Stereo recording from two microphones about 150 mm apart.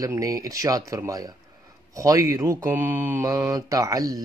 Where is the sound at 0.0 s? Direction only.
25° right (ahead or behind).